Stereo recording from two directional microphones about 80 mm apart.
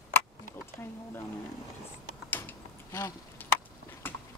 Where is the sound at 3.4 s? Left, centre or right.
Left.